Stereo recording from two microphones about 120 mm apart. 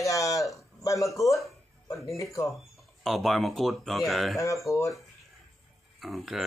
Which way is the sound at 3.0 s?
Centre (ahead or behind).